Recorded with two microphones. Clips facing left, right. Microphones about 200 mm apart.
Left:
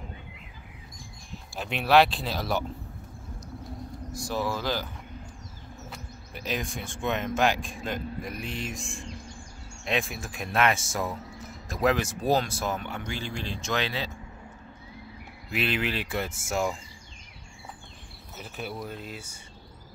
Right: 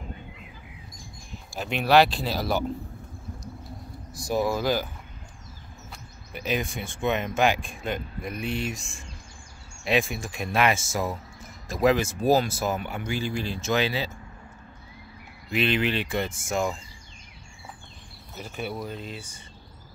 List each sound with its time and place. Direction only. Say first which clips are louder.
1.5 s speech: right 1 dB; centre (ahead or behind)
4.3 s speech: right 5 dB; 10° right (ahead or behind)
5.9 s speech: even; centre (ahead or behind)
9.8 s speech: right 5 dB; centre (ahead or behind)
15.5 s speech: right 4 dB; 5° left (ahead or behind)
18.3 s speech: right 3 dB; centre (ahead or behind)